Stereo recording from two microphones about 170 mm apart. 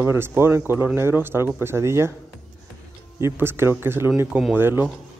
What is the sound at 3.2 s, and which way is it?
Speech, 15° right (ahead or behind).